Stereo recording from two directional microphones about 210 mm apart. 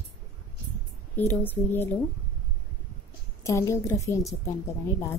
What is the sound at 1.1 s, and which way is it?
Speech, 10° left (ahead or behind).